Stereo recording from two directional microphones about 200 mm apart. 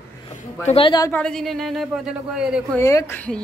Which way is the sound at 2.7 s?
15° left (ahead or behind).